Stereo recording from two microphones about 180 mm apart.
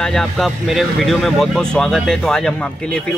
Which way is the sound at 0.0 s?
5° left (ahead or behind).